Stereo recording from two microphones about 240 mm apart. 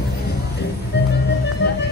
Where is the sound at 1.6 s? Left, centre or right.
Left.